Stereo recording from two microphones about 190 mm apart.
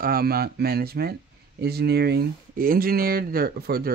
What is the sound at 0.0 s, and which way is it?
Speech, 50° right (ahead or behind).